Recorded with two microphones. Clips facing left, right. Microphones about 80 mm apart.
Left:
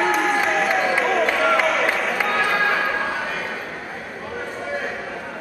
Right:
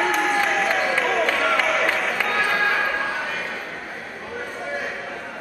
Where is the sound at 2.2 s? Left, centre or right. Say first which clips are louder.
Left 2 dB; centre.